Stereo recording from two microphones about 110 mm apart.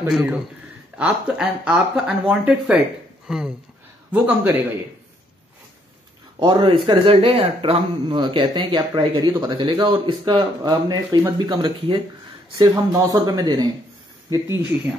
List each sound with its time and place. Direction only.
0.1 s speech: 10° right (ahead or behind)
6.4 s speech: 45° right (ahead or behind)
6.9 s speech: 60° right (ahead or behind)
8.2 s speech: 50° right (ahead or behind)